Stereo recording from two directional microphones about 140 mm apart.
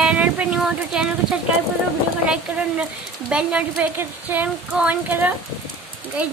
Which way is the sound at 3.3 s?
5° right (ahead or behind).